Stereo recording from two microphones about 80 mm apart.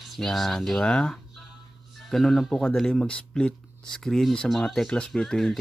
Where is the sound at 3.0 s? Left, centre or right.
Centre.